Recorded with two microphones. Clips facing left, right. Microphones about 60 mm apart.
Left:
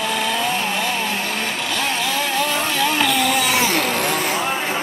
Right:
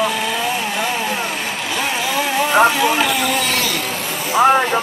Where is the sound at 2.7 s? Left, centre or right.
Centre.